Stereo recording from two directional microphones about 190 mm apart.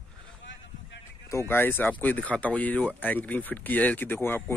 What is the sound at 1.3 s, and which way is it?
Speech, 15° left (ahead or behind).